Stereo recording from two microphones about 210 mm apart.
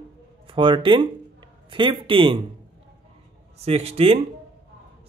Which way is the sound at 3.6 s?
30° right (ahead or behind).